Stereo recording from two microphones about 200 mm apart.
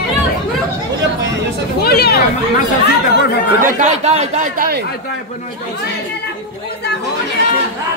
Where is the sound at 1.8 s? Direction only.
50° left (ahead or behind).